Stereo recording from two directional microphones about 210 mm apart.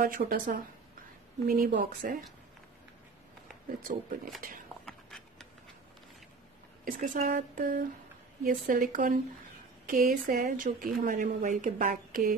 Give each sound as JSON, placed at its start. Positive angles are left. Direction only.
{"t": 0.0, "sound": "a woman's voice", "side_deg": -45}
{"t": 1.6, "sound": "a woman's voice", "side_deg": -40}
{"t": 3.8, "sound": "a woman's voice", "side_deg": -40}
{"t": 4.8, "sound": "a sound", "side_deg": 5}
{"t": 6.8, "sound": "a woman's voice", "side_deg": -40}